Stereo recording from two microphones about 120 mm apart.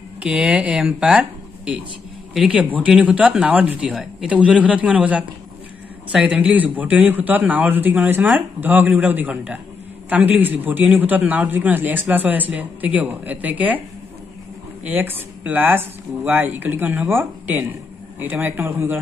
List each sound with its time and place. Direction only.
0.2 s a man's voice: 10° right (ahead or behind)
2.3 s a man's voice: 10° right (ahead or behind)
14.9 s a man's voice: 15° right (ahead or behind)